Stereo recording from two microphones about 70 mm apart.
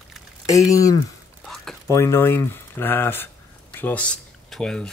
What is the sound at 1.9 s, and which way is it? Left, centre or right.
Speech, left.